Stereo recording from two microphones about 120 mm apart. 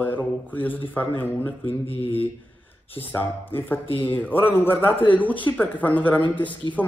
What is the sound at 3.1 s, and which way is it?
Speech, 15° left (ahead or behind).